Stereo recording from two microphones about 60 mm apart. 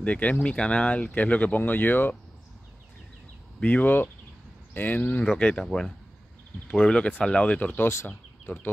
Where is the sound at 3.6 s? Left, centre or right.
Left.